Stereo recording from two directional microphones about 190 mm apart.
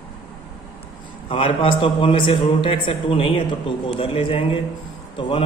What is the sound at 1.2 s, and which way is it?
A man's voice, 25° left (ahead or behind).